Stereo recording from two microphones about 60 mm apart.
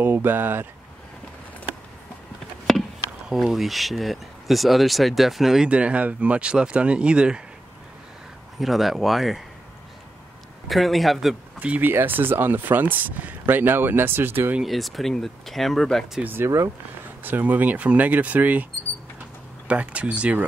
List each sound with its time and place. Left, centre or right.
0.0 s speech: right
2.7 s chop: centre
3.3 s speech: centre
5.7 s speech: right
8.5 s speech: centre
10.7 s speech: centre
11.6 s speech: right
11.9 s speech: right
14.6 s speech: centre
16.2 s speech: right
19.7 s speech: right